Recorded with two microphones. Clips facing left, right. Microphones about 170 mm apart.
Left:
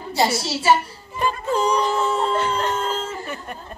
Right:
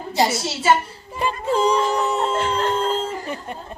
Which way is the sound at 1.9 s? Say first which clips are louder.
Even; 20° right (ahead or behind).